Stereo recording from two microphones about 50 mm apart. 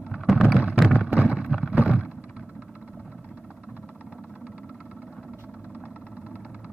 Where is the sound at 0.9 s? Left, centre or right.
Right.